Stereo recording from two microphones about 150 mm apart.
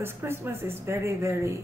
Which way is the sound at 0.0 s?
15° right (ahead or behind).